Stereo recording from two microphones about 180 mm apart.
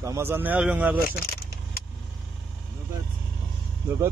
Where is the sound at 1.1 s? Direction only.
55° left (ahead or behind).